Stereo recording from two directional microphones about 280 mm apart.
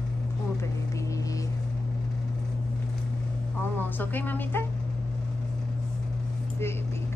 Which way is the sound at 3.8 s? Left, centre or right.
Centre.